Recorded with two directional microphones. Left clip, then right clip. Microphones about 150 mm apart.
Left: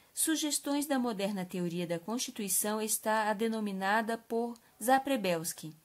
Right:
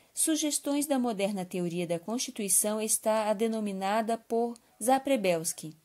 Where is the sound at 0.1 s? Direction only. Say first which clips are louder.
Right 3 dB; 20° right (ahead or behind).